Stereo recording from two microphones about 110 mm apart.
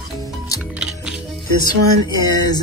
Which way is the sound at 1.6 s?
40° left (ahead or behind).